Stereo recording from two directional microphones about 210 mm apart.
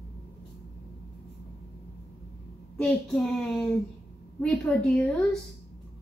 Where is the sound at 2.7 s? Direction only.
5° left (ahead or behind).